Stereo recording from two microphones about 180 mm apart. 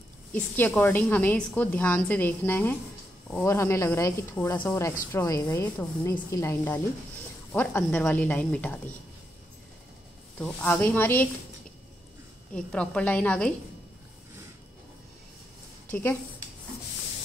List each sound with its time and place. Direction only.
0.3 s a woman's voice: 10° left (ahead or behind)
10.4 s a woman's voice: 10° left (ahead or behind)
12.5 s a woman's voice: 5° left (ahead or behind)
15.9 s a woman's voice: 10° left (ahead or behind)